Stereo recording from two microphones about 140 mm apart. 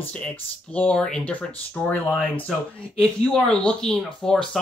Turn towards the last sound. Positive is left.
turn(degrees=5)  # may be behind; listen again after turning